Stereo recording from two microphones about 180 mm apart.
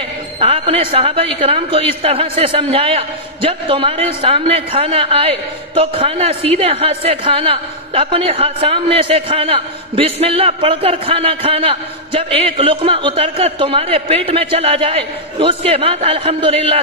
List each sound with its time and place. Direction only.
0.4 s a woman's voice: 30° right (ahead or behind)